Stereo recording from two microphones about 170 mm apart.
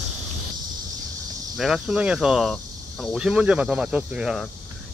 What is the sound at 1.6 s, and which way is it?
Speech, centre (ahead or behind).